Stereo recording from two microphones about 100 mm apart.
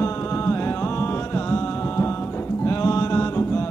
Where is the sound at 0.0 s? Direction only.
30° left (ahead or behind).